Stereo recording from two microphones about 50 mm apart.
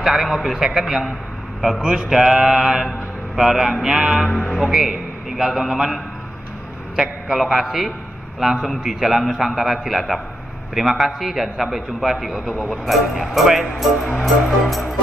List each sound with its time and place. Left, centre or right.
0.0 s speech: centre
1.8 s mantra: centre
3.3 s speech: centre
7.0 s speech: centre